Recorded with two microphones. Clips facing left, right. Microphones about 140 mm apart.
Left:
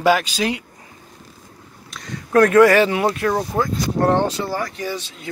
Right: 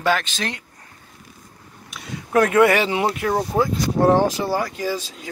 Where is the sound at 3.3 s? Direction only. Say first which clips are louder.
Even; 5° right (ahead or behind).